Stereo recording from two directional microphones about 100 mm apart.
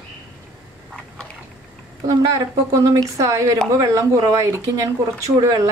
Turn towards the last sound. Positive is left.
turn(degrees=-40)  # may be behind; listen again after turning